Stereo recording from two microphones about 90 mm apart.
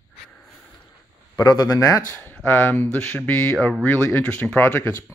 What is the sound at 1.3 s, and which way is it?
Speech, 50° left (ahead or behind).